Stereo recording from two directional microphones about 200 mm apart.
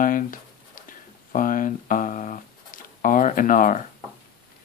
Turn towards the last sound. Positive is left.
turn(degrees=40)  # may be behind; listen again after turning